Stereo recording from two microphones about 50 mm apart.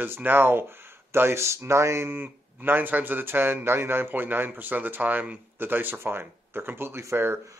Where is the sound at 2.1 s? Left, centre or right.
Right.